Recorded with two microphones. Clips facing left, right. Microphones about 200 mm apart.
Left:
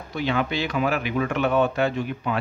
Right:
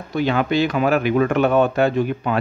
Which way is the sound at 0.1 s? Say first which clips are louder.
Right 6 dB; 45° right (ahead or behind).